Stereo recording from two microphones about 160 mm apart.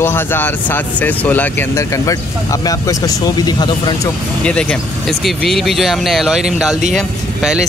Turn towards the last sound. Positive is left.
turn(degrees=-5)  # may be behind; listen again after turning